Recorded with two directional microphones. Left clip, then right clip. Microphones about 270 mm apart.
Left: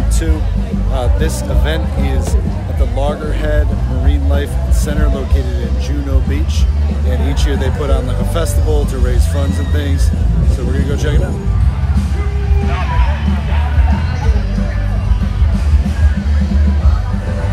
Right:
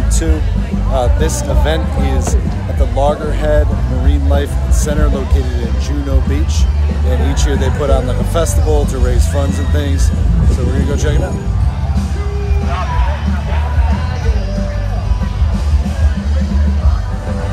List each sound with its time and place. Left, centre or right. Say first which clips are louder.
0.9 s speech: right 4 dB; centre
7.4 s speech: right 3 dB; centre
10.9 s speech: right 1 dB; centre